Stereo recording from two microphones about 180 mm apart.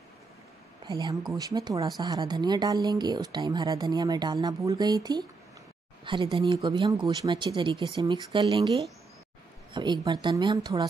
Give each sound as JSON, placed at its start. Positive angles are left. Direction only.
{"t": 0.8, "sound": "speech", "side_deg": -20}